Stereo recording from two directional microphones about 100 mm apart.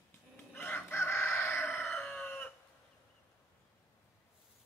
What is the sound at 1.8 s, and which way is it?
Chicken, 10° left (ahead or behind).